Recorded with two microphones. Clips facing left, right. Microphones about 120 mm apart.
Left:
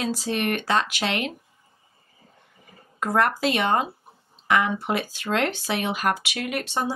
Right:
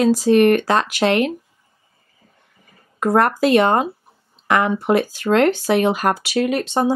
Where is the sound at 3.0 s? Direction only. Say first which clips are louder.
Right 6 dB; 45° right (ahead or behind).